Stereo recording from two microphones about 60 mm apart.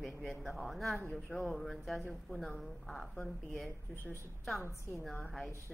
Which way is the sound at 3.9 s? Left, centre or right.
Left.